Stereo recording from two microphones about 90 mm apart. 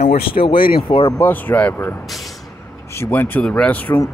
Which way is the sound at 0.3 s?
75° left (ahead or behind).